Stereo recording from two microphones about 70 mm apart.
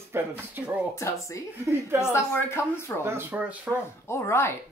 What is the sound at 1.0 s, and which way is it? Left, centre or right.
Speech, left.